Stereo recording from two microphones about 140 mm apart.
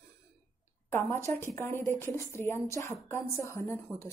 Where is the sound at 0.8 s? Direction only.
15° left (ahead or behind).